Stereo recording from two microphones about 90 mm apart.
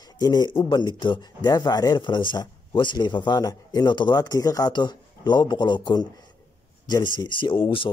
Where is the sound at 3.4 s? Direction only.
45° left (ahead or behind).